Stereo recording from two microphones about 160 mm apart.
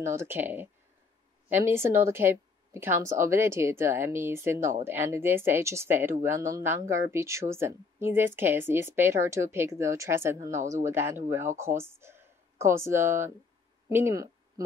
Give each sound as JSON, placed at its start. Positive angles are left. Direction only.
{"t": 0.0, "sound": "a woman's voice", "side_deg": -15}